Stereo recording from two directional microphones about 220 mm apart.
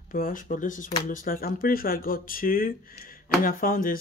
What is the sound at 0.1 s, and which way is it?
Speech, 40° left (ahead or behind).